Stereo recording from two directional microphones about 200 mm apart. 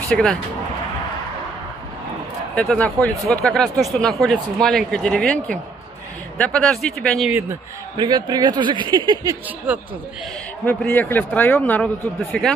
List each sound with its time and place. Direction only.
0.1 s speech: 5° left (ahead or behind)
2.5 s speech: 5° left (ahead or behind)
8.0 s speech: 20° right (ahead or behind)
10.6 s a man's voice: 10° left (ahead or behind)